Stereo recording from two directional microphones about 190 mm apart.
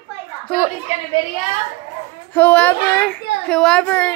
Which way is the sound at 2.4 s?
10° left (ahead or behind).